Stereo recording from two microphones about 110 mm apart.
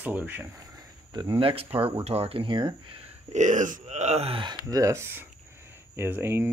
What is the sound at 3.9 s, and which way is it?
Speech, 90° right.